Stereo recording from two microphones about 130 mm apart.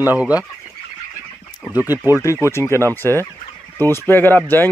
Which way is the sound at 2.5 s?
20° left (ahead or behind).